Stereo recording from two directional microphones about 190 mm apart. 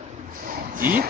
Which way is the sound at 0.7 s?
45° right (ahead or behind).